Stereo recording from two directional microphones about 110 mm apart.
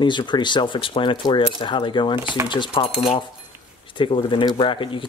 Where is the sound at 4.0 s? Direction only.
50° left (ahead or behind).